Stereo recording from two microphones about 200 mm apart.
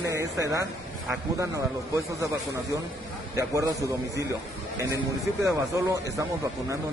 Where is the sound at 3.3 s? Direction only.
15° right (ahead or behind).